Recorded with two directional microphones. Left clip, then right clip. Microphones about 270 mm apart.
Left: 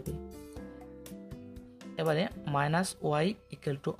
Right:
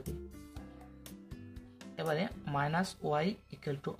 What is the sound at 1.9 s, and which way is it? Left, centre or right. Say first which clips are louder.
Speech: left 5 dB; left.